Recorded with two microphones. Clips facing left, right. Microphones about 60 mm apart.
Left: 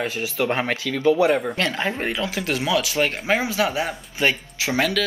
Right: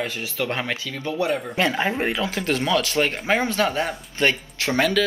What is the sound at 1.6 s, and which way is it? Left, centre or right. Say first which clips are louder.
Speech: right 2 dB; centre.